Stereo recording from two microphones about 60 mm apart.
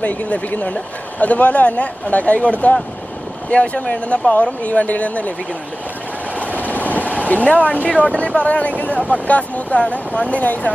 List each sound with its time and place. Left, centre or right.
0.0 s speech: left
6.4 s vehicle: left
7.2 s speech: left